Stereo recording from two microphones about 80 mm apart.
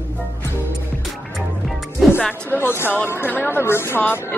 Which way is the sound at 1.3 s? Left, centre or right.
Centre.